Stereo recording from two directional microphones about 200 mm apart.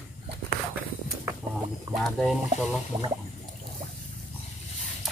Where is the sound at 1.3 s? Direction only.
15° right (ahead or behind).